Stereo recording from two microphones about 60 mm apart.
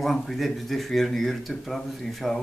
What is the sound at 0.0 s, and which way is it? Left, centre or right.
Speech, centre.